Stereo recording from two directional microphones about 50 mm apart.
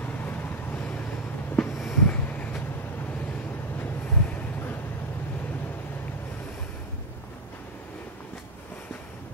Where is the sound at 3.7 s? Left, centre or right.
Left.